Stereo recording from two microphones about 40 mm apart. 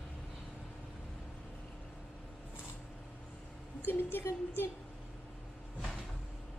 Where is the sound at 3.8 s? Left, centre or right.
Left.